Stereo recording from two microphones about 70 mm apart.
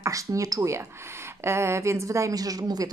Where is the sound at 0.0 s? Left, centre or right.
Right.